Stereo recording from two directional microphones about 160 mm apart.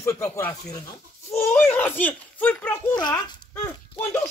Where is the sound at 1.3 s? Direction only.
15° left (ahead or behind).